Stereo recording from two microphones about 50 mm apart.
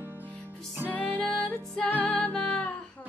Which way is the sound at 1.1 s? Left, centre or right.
Centre.